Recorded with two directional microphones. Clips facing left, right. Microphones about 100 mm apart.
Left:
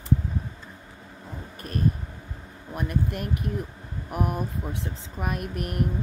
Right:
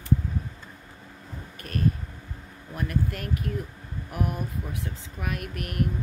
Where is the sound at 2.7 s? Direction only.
20° left (ahead or behind).